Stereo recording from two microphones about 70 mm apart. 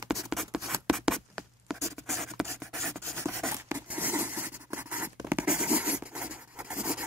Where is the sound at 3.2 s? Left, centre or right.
Right.